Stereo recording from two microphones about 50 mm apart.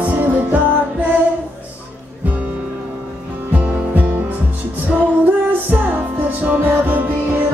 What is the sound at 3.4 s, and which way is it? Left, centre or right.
Music, right.